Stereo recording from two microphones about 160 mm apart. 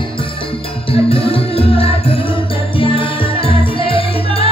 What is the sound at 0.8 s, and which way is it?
Music, 35° left (ahead or behind).